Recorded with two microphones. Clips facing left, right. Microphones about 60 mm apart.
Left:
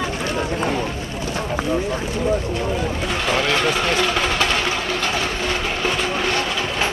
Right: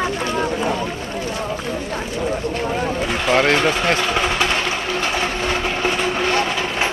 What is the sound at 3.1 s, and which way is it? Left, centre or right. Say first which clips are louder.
Speech: right 4 dB; centre.